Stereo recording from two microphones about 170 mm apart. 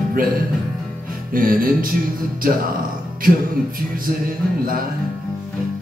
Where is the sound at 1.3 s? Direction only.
55° right (ahead or behind).